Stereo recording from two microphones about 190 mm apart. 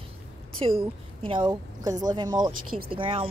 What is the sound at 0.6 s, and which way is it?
A woman's voice, 30° right (ahead or behind).